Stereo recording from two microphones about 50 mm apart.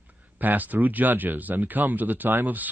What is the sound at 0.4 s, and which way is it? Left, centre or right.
Speech, right.